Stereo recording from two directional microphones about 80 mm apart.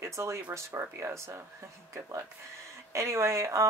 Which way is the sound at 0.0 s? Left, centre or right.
Right.